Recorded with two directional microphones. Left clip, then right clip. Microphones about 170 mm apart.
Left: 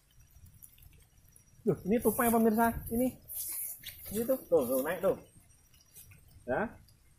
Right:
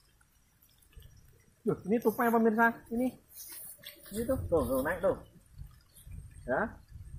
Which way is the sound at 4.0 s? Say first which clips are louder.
Left 1 dB; 30° left (ahead or behind).